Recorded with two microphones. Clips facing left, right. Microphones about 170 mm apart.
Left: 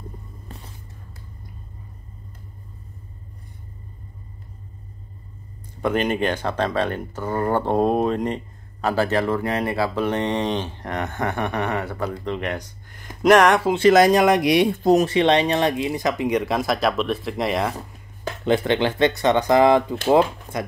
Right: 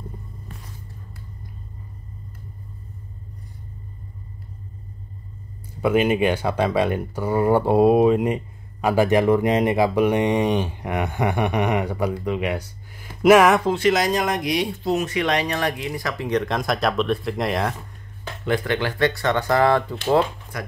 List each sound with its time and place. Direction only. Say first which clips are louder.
5.8 s speech: right 3 dB; 5° right (ahead or behind)
13.9 s speech: left 7 dB; 65° left (ahead or behind); by 15.0 s 45° left (ahead or behind)
15.0 s speech: left 5 dB; 25° left (ahead or behind); by 17.7 s centre (ahead or behind)
18.4 s speech: left 3 dB; 25° left (ahead or behind)